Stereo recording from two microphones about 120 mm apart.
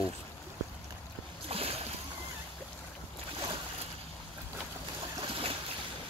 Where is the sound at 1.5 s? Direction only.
55° right (ahead or behind).